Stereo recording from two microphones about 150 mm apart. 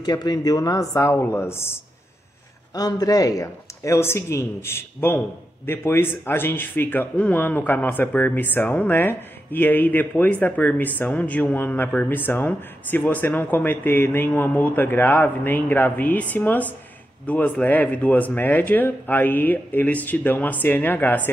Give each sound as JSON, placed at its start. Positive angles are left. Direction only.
{"t": 0.0, "sound": "speech", "side_deg": 25}